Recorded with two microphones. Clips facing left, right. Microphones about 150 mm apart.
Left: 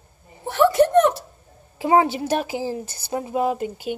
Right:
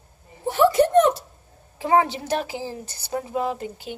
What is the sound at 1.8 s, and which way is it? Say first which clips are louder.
Speech: left 2 dB; 15° left (ahead or behind).